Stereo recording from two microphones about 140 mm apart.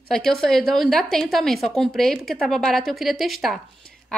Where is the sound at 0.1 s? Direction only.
5° left (ahead or behind).